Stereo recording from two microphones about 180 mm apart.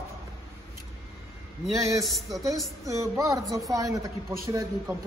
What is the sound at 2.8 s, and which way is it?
A man's voice, 20° right (ahead or behind).